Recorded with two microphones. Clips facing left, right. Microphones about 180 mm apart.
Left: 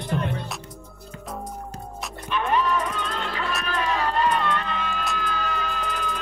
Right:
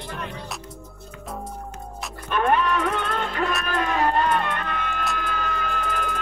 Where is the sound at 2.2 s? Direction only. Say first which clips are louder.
Right 2 dB; 50° right (ahead or behind).